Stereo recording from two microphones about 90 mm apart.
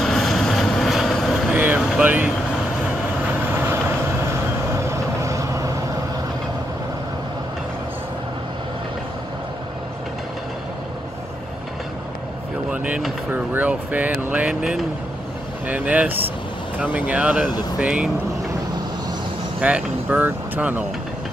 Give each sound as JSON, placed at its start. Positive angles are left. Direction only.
{"t": 0.0, "sound": "vehicle", "side_deg": 5}
{"t": 1.5, "sound": "vehicle", "side_deg": -20}
{"t": 2.0, "sound": "speech", "side_deg": -15}
{"t": 3.5, "sound": "vehicle", "side_deg": -25}
{"t": 12.7, "sound": "a sound", "side_deg": -15}
{"t": 15.6, "sound": "vehicle", "side_deg": -15}
{"t": 17.7, "sound": "speech", "side_deg": -15}
{"t": 19.6, "sound": "vehicle", "side_deg": -15}